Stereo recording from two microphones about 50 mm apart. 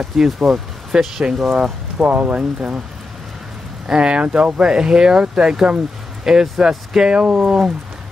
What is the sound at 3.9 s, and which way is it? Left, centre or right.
Speech, centre.